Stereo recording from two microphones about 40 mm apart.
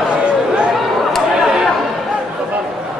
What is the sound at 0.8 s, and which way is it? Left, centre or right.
Chatter, centre.